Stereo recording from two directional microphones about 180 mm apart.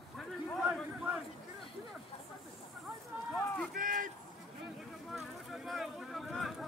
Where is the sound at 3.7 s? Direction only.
50° right (ahead or behind).